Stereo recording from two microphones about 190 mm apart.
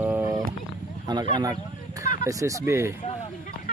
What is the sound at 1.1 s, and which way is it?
Speech, 20° right (ahead or behind).